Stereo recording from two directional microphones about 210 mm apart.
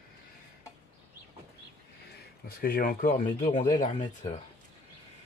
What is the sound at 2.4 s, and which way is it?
Speech, 45° left (ahead or behind).